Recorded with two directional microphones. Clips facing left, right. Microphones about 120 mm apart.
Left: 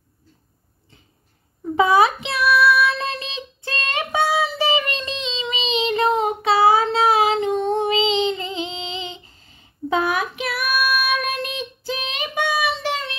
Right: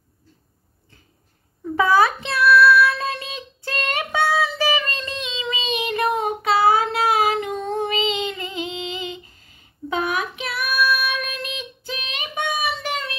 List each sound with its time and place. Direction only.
1.8 s child singing: 20° left (ahead or behind)